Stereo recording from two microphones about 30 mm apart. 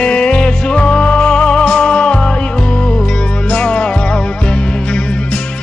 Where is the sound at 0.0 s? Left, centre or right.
Left.